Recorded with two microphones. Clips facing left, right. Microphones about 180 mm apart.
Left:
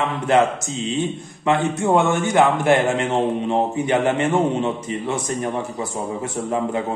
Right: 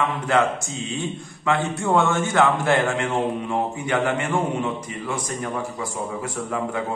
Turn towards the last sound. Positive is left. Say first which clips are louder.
# left 4 dB
turn(degrees=25)  # may be behind; listen again after turning